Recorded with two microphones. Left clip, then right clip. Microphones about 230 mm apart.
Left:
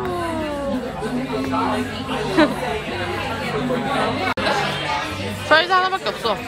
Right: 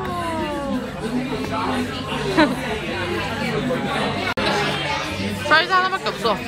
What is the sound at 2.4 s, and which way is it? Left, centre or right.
Speech, centre.